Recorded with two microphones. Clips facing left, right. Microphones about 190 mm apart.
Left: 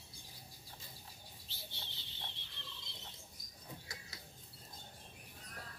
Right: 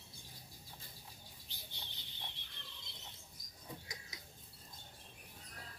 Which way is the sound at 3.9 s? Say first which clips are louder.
Even; 15° right (ahead or behind).